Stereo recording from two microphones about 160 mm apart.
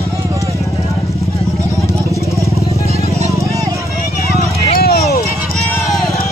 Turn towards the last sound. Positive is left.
turn(degrees=75)  # may be behind; listen again after turning